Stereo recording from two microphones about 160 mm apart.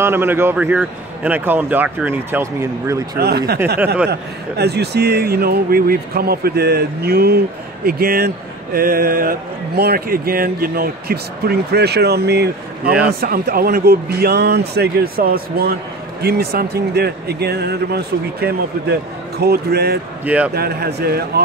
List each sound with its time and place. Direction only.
0.0 s a man's voice: 15° right (ahead or behind)
3.2 s speech: 85° right
13.2 s speech: 70° right (ahead or behind)
20.2 s a man's voice: 10° right (ahead or behind)
20.5 s speech: 75° right (ahead or behind)